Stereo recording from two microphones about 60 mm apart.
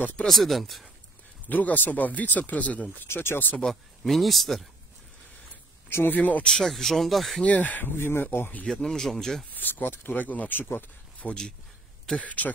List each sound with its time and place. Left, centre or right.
0.3 s speech: centre
1.5 s speech: left
3.1 s speech: left
3.6 s speech: centre
5.9 s speech: left
6.1 s speech: left
6.4 s speech: centre
7.4 s speech: left
8.8 s speech: centre
9.6 s speech: left